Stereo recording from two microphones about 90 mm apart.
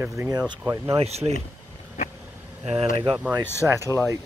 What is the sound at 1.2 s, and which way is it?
Speech, 45° right (ahead or behind).